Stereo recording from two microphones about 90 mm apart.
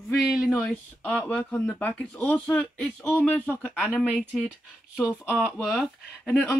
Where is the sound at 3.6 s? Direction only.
15° right (ahead or behind).